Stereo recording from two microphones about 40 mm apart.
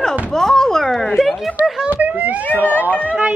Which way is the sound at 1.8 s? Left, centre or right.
Right.